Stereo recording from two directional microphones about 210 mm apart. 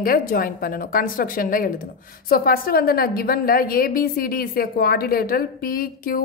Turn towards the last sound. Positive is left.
turn(degrees=45)  # may be behind; listen again after turning